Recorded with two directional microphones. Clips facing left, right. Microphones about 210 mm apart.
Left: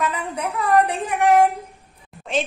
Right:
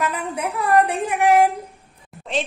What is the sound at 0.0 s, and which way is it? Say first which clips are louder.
A woman's voice: right 1 dB; centre (ahead or behind).